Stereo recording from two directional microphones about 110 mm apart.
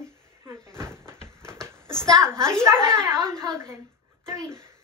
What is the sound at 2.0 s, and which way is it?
A woman's voice, 30° right (ahead or behind).